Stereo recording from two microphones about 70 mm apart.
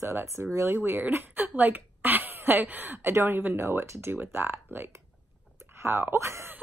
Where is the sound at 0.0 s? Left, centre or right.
Right.